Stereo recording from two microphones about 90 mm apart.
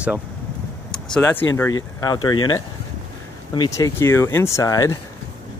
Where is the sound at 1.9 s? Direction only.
45° left (ahead or behind).